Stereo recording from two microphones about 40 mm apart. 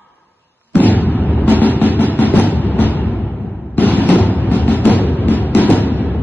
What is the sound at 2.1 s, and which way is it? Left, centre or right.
Music, left.